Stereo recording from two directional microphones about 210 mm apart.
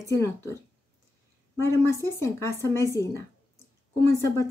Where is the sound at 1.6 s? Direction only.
10° left (ahead or behind).